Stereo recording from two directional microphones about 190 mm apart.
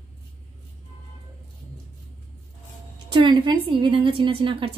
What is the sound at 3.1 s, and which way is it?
A woman's voice, 25° right (ahead or behind).